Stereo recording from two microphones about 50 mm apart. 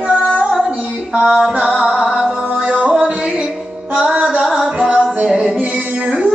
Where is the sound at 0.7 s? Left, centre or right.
Right.